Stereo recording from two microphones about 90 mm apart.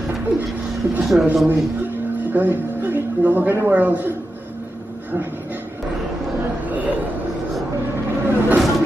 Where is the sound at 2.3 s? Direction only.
25° right (ahead or behind).